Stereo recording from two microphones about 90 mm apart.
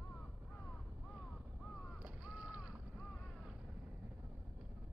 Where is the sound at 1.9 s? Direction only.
15° right (ahead or behind).